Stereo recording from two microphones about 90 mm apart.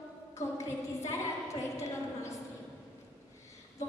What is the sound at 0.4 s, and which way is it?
A woman's voice, 35° left (ahead or behind).